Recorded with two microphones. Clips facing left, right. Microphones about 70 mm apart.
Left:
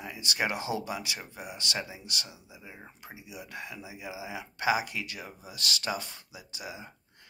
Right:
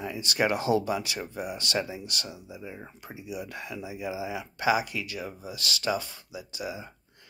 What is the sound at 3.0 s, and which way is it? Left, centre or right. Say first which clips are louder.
Speech: right 8 dB; centre.